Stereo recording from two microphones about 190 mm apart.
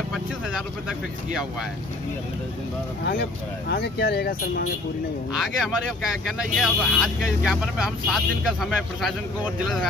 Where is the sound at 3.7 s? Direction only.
60° left (ahead or behind).